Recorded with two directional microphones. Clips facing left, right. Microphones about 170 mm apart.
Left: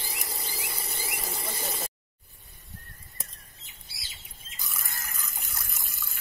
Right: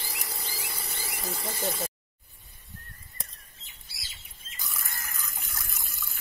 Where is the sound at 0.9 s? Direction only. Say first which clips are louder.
Right 2 dB; centre (ahead or behind).